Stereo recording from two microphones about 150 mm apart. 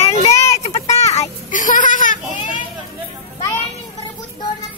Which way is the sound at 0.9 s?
55° left (ahead or behind).